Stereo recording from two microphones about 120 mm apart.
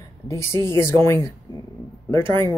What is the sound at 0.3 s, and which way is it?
Speech, 20° left (ahead or behind).